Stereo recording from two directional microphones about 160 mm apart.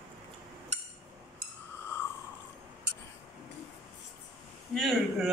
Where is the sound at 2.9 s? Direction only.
90° right.